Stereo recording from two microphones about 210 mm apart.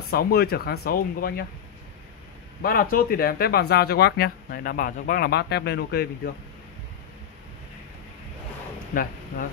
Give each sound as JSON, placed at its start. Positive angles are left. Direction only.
{"t": 0.1, "sound": "speech", "side_deg": 50}
{"t": 2.6, "sound": "speech", "side_deg": 45}
{"t": 8.9, "sound": "speech", "side_deg": 40}